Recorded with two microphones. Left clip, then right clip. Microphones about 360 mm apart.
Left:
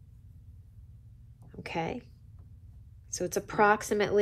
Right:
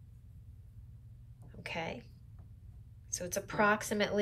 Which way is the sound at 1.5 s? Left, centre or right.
Centre.